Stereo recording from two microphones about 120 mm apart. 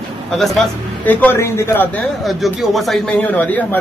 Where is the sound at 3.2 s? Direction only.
15° left (ahead or behind).